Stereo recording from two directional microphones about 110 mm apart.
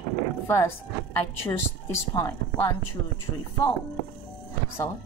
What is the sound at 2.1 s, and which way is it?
Speech, 25° left (ahead or behind).